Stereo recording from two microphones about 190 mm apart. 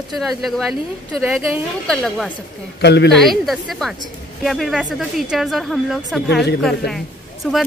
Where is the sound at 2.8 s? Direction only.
60° left (ahead or behind).